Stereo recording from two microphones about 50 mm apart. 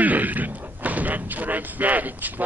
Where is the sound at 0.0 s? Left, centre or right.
Right.